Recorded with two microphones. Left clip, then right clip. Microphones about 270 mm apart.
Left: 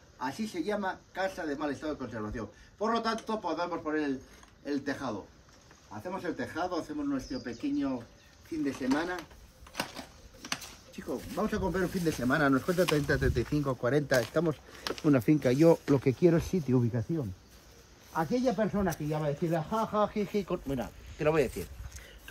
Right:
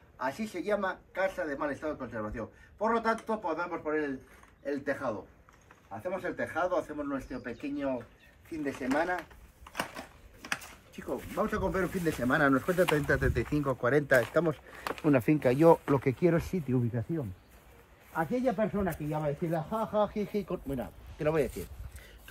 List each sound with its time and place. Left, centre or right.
0.2 s speech: centre
3.3 s speech: left
4.6 s speech: centre